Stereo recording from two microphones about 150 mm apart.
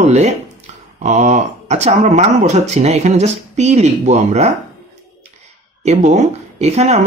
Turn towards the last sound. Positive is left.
turn(degrees=-45)  # may be behind; listen again after turning